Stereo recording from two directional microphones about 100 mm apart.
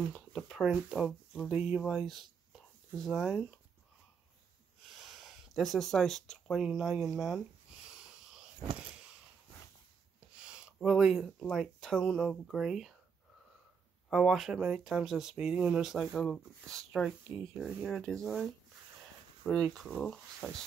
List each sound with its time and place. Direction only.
0.1 s speech: centre (ahead or behind)
4.9 s a sound: centre (ahead or behind)
6.7 s speech: 5° right (ahead or behind)
8.7 s a sound: 10° right (ahead or behind)
10.4 s speech: 10° right (ahead or behind)
14.1 s speech: centre (ahead or behind)
17.8 s speech: 5° left (ahead or behind)